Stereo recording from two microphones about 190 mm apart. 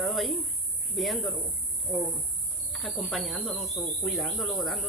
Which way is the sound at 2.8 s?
Centre (ahead or behind).